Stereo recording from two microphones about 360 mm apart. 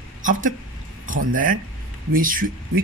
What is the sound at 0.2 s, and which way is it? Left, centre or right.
Speech, right.